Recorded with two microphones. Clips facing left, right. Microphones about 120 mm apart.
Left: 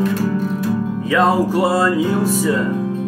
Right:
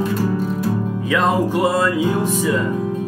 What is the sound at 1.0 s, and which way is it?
Music, 5° left (ahead or behind).